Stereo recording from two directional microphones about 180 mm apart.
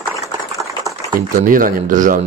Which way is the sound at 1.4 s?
50° right (ahead or behind).